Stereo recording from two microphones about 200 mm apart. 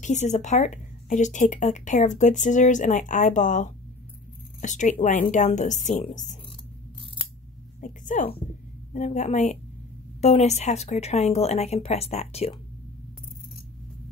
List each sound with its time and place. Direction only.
0.0 s speech: 35° left (ahead or behind)
7.8 s a woman's voice: 40° left (ahead or behind)